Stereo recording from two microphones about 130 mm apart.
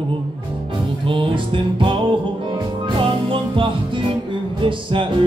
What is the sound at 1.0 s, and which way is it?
Music, 40° right (ahead or behind).